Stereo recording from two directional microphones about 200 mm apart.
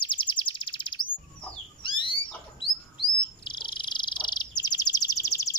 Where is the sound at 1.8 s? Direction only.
25° left (ahead or behind).